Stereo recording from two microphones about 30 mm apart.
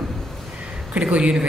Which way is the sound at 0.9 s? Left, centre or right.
Right.